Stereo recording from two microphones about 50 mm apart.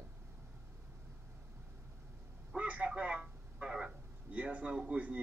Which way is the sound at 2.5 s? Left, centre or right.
Right.